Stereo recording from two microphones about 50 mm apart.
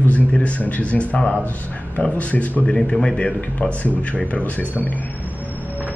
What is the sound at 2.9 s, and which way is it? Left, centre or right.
Speech, centre.